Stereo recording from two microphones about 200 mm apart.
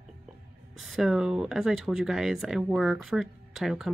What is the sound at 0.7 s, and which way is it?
Speech, centre (ahead or behind).